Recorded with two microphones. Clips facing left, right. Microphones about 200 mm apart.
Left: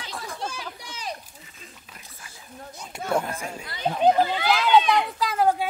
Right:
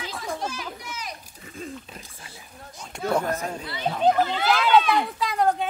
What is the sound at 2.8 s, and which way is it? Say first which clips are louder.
Speech: right 1 dB; 5° left (ahead or behind).